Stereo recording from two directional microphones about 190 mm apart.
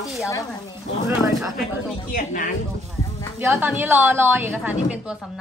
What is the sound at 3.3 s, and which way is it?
A woman's voice, 10° right (ahead or behind).